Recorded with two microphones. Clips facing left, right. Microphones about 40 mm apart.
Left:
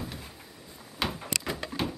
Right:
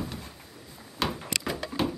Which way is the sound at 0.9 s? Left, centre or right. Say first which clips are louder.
Right 2 dB; centre.